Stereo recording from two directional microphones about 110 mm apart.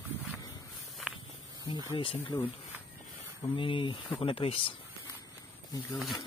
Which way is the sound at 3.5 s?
50° left (ahead or behind).